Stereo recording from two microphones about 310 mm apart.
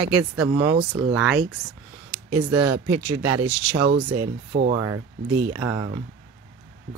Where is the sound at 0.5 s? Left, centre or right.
Centre.